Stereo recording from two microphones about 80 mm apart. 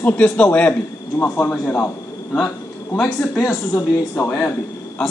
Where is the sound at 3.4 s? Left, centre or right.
Left.